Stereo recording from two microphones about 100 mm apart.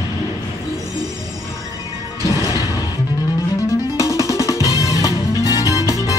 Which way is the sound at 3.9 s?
35° left (ahead or behind).